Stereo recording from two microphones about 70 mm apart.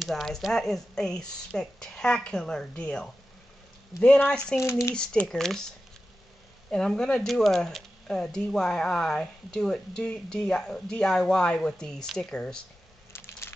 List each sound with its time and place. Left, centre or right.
0.0 s speech: centre
4.3 s speech: centre
4.6 s speech: left
5.2 s speech: centre
6.7 s speech: centre
13.1 s a sound: left